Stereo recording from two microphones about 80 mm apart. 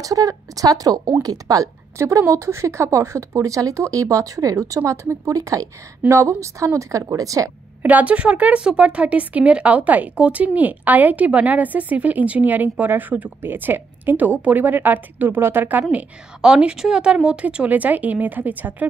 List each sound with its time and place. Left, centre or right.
0.0 s speech: right
2.0 s speech: right
7.8 s a woman's voice: centre
15.9 s a woman's voice: centre